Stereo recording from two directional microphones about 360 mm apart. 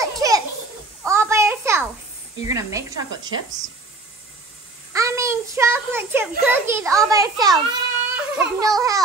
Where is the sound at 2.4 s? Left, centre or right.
Centre.